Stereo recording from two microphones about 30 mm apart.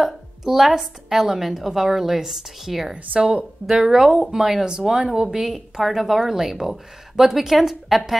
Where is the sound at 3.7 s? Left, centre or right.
Right.